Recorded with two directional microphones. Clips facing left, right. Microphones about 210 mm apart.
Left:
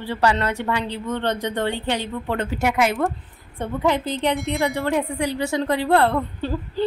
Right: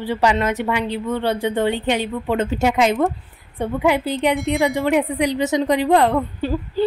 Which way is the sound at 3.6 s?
10° right (ahead or behind).